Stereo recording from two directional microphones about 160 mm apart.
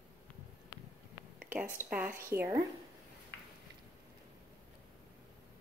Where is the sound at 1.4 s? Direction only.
10° right (ahead or behind).